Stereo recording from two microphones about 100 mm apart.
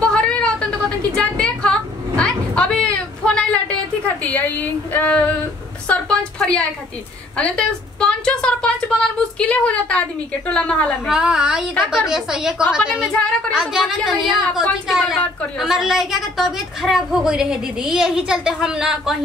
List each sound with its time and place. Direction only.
0.0 s a sound: 10° left (ahead or behind)
9.4 s a woman's voice: 10° left (ahead or behind)
11.1 s a woman's voice: 10° right (ahead or behind)